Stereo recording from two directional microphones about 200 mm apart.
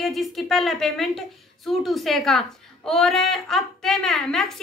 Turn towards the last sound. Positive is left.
turn(degrees=0)  # may be behind; listen again after turning